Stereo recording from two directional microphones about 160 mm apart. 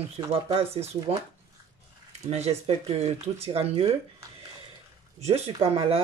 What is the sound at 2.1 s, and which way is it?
Speech, 40° right (ahead or behind).